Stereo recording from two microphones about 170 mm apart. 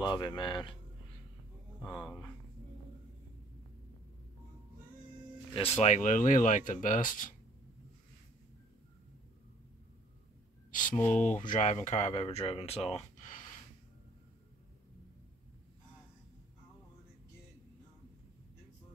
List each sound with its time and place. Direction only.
0.0 s speech: 25° left (ahead or behind)
1.9 s speech: 5° left (ahead or behind)
5.5 s speech: 35° left (ahead or behind)
10.7 s speech: 50° left (ahead or behind)
11.0 s speech: 10° left (ahead or behind)
11.3 s speech: 45° left (ahead or behind)